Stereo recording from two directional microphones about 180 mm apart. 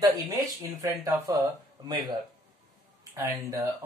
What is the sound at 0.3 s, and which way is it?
Speech, 20° right (ahead or behind).